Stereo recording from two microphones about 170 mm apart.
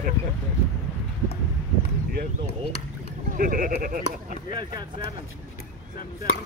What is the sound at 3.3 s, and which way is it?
Sheep, 55° right (ahead or behind).